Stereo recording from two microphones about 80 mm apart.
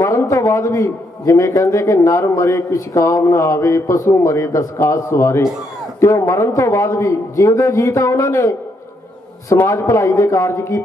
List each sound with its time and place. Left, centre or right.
0.1 s a man's voice: left
9.6 s a man's voice: left